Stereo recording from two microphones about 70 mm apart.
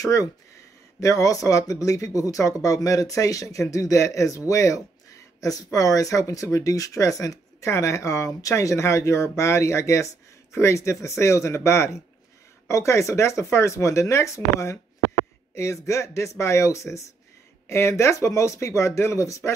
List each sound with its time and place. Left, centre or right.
0.0 s speech: left